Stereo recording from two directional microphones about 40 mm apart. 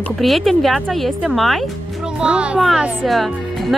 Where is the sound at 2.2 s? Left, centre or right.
Right.